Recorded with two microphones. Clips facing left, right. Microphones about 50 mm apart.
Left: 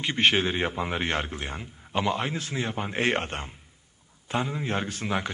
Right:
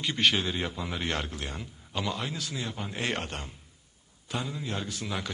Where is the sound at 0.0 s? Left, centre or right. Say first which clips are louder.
Left 3 dB; left.